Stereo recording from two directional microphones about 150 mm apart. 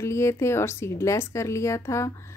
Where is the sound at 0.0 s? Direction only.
20° left (ahead or behind).